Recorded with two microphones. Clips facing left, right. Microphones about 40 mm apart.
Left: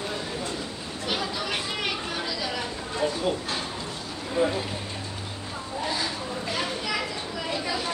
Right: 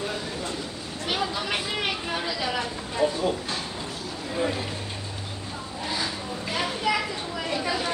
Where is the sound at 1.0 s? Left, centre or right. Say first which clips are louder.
Right 2 dB; centre.